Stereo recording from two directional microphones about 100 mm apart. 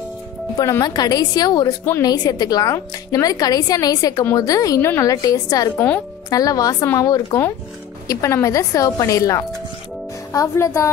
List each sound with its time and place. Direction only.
0.6 s a woman's voice: 40° left (ahead or behind)